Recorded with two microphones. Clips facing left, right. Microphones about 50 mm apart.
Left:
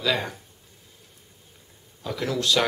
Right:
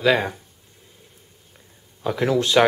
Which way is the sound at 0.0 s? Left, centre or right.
Right.